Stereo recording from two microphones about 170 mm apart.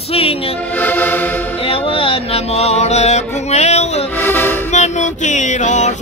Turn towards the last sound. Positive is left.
turn(degrees=45)  # may be behind; listen again after turning